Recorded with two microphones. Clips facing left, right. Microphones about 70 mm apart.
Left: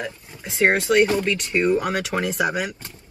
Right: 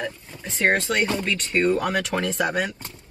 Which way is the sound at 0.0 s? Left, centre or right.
Centre.